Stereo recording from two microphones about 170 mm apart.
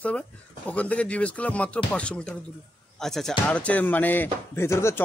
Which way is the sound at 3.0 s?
Centre (ahead or behind).